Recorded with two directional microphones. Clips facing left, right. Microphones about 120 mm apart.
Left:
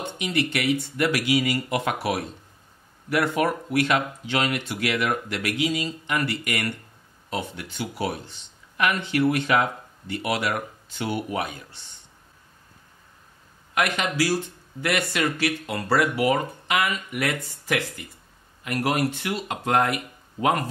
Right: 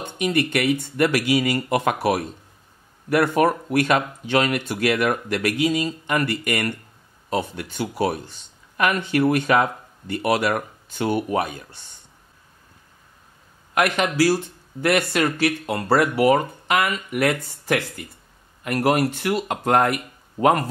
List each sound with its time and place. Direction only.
0.2 s speech: 50° right (ahead or behind)
13.7 s speech: 40° right (ahead or behind)